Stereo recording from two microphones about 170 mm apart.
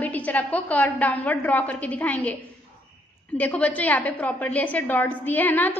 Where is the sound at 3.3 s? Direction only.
10° left (ahead or behind).